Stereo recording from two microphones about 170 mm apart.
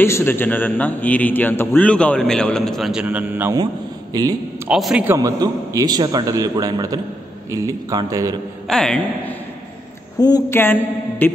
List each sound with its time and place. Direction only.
0.0 s a man's voice: 15° left (ahead or behind); by 3.5 s 10° right (ahead or behind)
4.1 s a man's voice: 20° right (ahead or behind)
4.6 s a woman's voice: 5° right (ahead or behind)
5.0 s a man's voice: 20° right (ahead or behind)
8.6 s a woman's voice: 5° left (ahead or behind)
10.2 s a man's voice: 15° left (ahead or behind)